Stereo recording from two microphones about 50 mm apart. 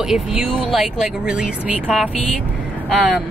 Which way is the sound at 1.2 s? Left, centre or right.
Centre.